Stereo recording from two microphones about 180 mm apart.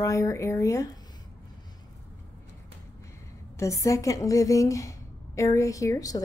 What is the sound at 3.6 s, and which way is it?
A woman's voice, 15° left (ahead or behind).